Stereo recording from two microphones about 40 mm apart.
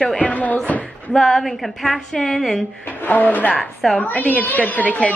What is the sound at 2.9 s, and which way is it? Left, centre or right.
Speech, left.